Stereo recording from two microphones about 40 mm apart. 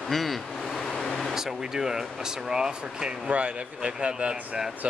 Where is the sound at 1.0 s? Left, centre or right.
Centre.